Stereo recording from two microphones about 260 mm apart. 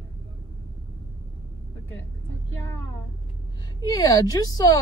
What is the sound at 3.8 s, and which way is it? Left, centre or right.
Speech, centre.